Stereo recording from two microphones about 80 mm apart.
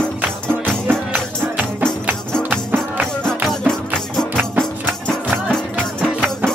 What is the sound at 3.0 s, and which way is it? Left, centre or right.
Music, centre.